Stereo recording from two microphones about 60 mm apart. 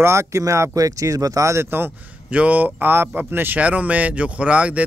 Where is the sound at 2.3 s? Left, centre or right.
Right.